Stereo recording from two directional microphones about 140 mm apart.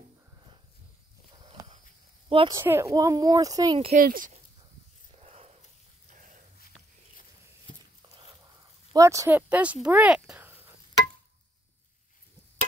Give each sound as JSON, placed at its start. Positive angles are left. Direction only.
{"t": 2.2, "sound": "speech", "side_deg": -40}
{"t": 2.5, "sound": "speech", "side_deg": -20}
{"t": 3.9, "sound": "speech", "side_deg": -80}
{"t": 5.2, "sound": "a sound", "side_deg": -50}
{"t": 6.0, "sound": "dog", "side_deg": -70}
{"t": 8.9, "sound": "speech", "side_deg": -25}
{"t": 9.5, "sound": "speech", "side_deg": -10}